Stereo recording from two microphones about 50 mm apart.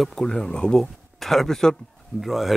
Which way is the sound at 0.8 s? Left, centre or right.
Centre.